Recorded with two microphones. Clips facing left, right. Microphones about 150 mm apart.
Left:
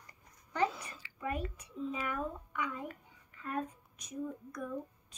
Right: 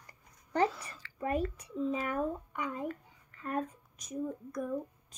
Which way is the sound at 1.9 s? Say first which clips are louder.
Right 4 dB; 40° right (ahead or behind).